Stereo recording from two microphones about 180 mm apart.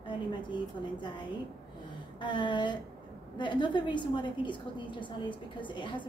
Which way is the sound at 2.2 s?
25° left (ahead or behind).